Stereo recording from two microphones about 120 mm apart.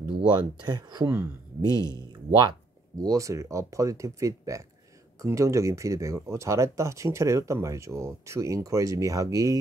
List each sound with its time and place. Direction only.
0.3 s speech: 35° right (ahead or behind)
1.0 s speech: 20° right (ahead or behind)
1.9 s speech: 35° right (ahead or behind)
3.0 s speech: 25° right (ahead or behind)